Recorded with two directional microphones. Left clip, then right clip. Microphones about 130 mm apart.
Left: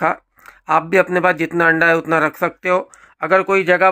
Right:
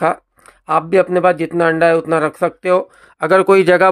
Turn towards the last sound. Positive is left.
turn(degrees=-70)  # may be behind; listen again after turning